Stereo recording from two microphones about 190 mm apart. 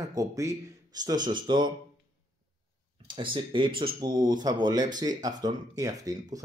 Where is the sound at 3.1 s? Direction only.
25° right (ahead or behind).